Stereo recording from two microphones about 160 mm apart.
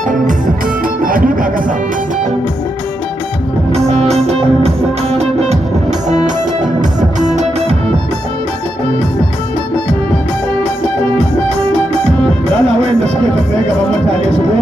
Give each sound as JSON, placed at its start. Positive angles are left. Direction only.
{"t": 1.0, "sound": "music", "side_deg": -60}
{"t": 3.7, "sound": "music", "side_deg": -40}
{"t": 6.8, "sound": "music", "side_deg": -50}
{"t": 11.9, "sound": "music", "side_deg": -40}